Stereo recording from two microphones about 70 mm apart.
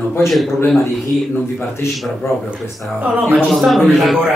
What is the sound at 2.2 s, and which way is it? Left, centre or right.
Speech, left.